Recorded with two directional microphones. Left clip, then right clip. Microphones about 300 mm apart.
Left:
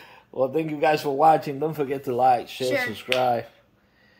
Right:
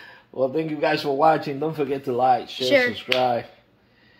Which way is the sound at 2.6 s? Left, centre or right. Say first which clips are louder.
Right 7 dB; right.